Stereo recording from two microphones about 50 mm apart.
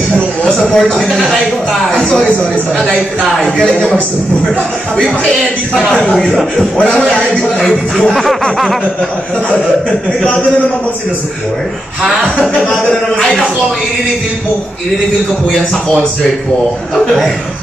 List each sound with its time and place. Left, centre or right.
0.5 s speech: centre
3.5 s speech: centre
9.5 s speech: left
16.9 s speech: centre